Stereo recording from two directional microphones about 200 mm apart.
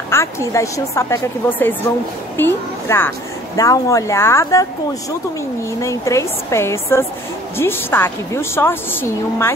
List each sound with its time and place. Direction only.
0.1 s a woman's voice: 15° left (ahead or behind)
5.8 s a woman's voice: 15° left (ahead or behind)